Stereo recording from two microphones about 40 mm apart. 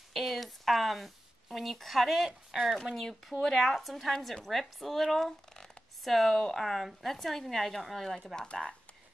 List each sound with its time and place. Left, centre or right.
0.1 s speech: centre
8.4 s speech: left